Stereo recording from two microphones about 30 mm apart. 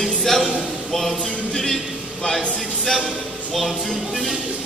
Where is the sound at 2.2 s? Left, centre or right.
Centre.